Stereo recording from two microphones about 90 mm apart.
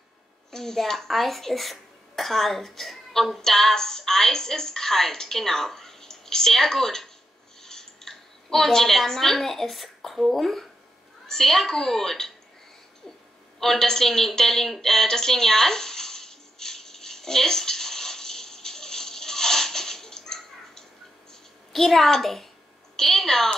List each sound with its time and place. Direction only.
0.5 s a child's voice: 5° left (ahead or behind)
13.6 s a sound: 5° left (ahead or behind)
21.7 s a child's voice: centre (ahead or behind)